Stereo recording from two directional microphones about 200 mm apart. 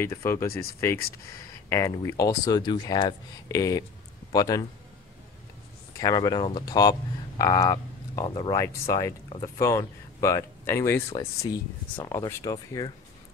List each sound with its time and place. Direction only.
0.0 s speech: 15° left (ahead or behind)
1.7 s speech: 15° left (ahead or behind)
5.9 s speech: 20° left (ahead or behind)